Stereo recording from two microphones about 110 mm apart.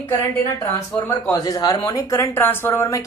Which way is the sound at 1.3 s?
35° left (ahead or behind).